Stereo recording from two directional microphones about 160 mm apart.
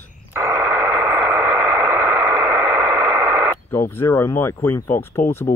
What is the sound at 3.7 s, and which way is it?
Speech, 15° left (ahead or behind).